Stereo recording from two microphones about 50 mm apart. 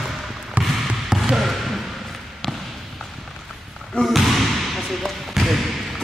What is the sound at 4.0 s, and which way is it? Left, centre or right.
Basketball bounce, centre.